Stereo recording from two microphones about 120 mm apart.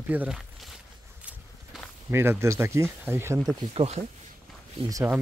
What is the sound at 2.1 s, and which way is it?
Speech, 20° right (ahead or behind).